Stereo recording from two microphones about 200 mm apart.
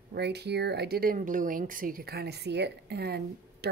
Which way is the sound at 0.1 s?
55° right (ahead or behind).